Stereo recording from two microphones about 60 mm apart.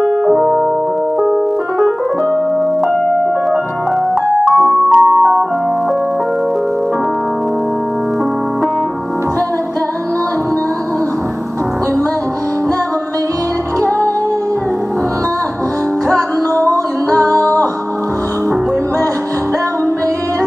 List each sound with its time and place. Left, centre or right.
0.0 s piano: centre
4.6 s music: centre
17.3 s music: left